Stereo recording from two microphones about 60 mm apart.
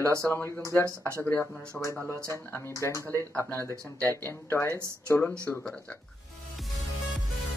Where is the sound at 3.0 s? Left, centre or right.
Left.